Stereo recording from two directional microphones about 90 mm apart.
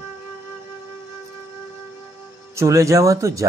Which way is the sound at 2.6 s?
35° right (ahead or behind).